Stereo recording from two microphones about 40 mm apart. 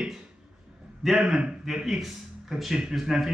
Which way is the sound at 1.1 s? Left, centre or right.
Centre.